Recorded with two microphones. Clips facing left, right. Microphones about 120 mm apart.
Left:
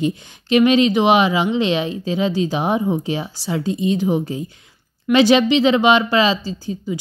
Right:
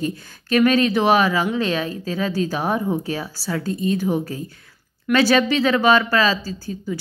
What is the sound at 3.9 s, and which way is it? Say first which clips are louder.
Speech: left 3 dB; 15° left (ahead or behind).